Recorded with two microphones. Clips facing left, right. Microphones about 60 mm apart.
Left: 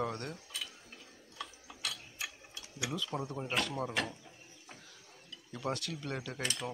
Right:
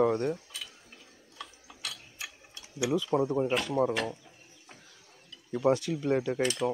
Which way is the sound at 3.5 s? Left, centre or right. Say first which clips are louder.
Right 7 dB; centre.